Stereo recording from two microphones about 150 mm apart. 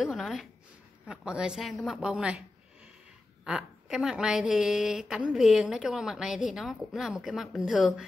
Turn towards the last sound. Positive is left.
turn(degrees=-5)  # may be behind; listen again after turning